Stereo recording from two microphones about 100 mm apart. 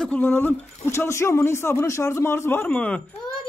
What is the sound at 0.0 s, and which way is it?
A man's voice, 15° left (ahead or behind).